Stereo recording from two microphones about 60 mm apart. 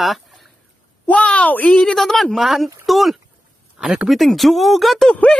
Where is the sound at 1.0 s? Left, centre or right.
Left.